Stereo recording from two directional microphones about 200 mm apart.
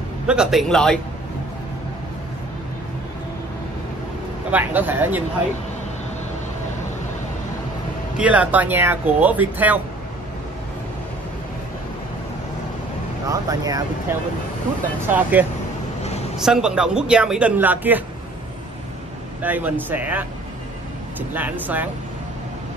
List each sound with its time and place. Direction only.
0.3 s speech: 5° right (ahead or behind)
4.5 s speech: 10° right (ahead or behind)
8.2 s speech: 5° right (ahead or behind)
13.3 s speech: 20° right (ahead or behind)
15.0 s speech: 10° right (ahead or behind)
16.4 s speech: 5° right (ahead or behind)
19.4 s speech: 10° right (ahead or behind)
21.3 s speech: 10° right (ahead or behind)